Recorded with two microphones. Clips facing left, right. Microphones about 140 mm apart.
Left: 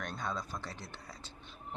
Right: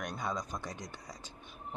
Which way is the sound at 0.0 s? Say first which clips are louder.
Right 2 dB; 10° right (ahead or behind).